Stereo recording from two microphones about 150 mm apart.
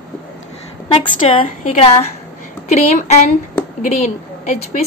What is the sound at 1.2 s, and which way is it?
A woman's voice, 40° left (ahead or behind).